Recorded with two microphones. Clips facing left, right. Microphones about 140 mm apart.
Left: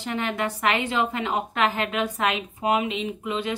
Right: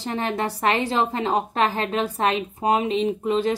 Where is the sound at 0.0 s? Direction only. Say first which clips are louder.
Right 2 dB; 35° right (ahead or behind).